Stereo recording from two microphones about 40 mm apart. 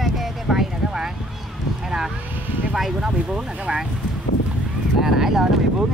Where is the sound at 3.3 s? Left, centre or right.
Right.